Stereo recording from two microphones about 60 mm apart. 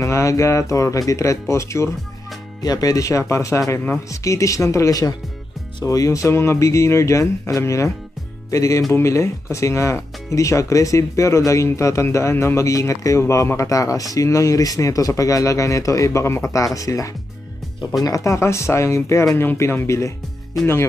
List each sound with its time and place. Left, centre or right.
0.0 s speech: left
2.6 s speech: left
6.3 s speech: left
19.4 s speech: left